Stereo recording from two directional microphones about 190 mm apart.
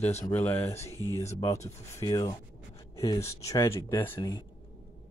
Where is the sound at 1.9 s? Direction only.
20° left (ahead or behind).